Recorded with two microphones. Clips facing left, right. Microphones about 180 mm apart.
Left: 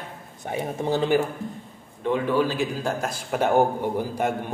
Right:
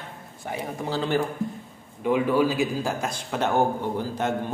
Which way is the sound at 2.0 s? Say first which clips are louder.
Right 1 dB; 10° right (ahead or behind).